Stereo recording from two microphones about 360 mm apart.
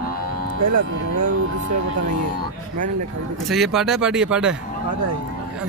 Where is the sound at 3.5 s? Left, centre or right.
Centre.